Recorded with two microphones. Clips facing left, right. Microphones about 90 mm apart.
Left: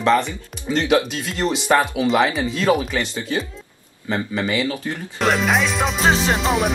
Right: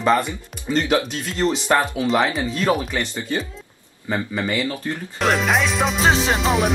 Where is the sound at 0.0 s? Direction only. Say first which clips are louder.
Left 1 dB; 10° right (ahead or behind).